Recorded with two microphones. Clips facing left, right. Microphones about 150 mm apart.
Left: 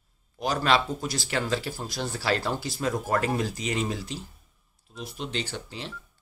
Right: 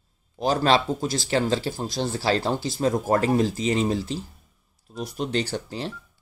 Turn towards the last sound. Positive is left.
turn(degrees=-40)  # may be behind; listen again after turning